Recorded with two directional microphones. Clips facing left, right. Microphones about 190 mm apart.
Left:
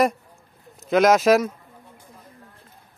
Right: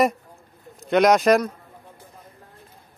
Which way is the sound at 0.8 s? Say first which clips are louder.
Even; centre (ahead or behind).